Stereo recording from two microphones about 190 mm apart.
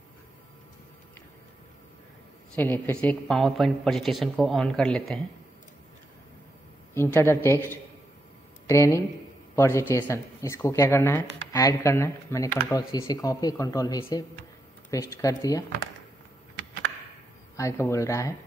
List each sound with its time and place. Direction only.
2.5 s speech: 10° left (ahead or behind)
6.9 s speech: 15° left (ahead or behind)
17.6 s speech: 15° left (ahead or behind)